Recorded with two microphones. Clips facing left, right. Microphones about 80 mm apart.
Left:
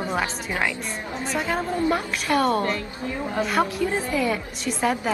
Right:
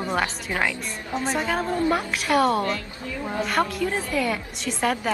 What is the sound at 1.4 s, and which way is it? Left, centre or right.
A woman's voice, centre.